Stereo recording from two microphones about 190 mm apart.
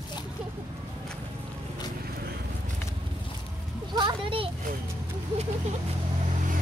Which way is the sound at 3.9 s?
25° right (ahead or behind).